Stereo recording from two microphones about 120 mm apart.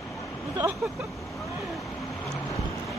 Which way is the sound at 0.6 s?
25° right (ahead or behind).